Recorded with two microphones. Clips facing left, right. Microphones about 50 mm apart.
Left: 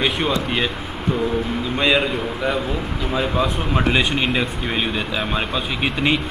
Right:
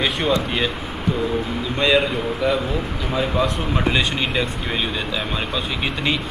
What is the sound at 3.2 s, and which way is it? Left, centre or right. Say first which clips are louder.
Speech: even; centre.